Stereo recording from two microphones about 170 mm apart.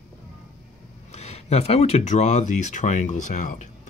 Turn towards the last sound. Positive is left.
turn(degrees=45)  # may be behind; listen again after turning